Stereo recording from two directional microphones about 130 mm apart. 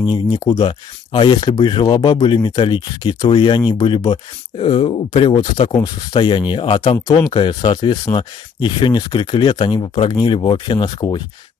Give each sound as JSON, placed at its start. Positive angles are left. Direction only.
{"t": 0.0, "sound": "speech", "side_deg": 40}
{"t": 6.8, "sound": "speech", "side_deg": 30}